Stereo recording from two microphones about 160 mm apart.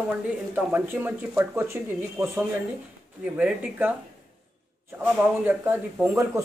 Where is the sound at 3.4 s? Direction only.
10° right (ahead or behind).